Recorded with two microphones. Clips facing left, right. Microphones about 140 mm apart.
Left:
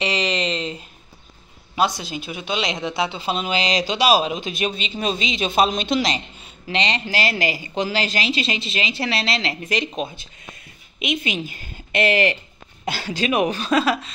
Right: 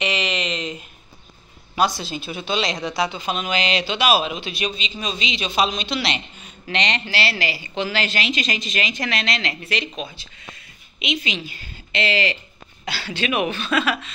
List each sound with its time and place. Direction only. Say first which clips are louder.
0.0 s a sound: left 2 dB; 35° left (ahead or behind)
1.8 s a woman's voice: even; 20° left (ahead or behind)
7.1 s a woman's voice: left 2 dB; 45° left (ahead or behind)